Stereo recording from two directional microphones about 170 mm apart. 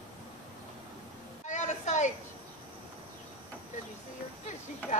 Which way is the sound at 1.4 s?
45° left (ahead or behind).